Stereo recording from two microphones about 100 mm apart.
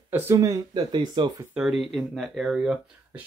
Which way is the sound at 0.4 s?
40° right (ahead or behind).